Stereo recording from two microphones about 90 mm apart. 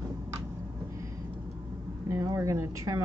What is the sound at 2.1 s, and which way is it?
Speech, 35° right (ahead or behind).